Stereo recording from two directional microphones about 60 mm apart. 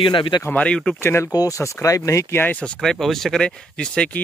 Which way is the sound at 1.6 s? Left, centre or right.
Left.